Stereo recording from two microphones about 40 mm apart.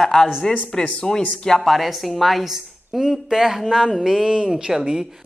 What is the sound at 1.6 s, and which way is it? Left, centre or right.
A man's voice, centre.